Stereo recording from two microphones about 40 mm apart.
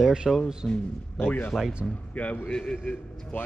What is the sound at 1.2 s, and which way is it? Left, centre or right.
Speech, left.